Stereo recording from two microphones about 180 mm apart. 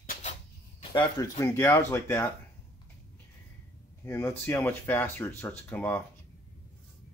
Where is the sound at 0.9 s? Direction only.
20° left (ahead or behind).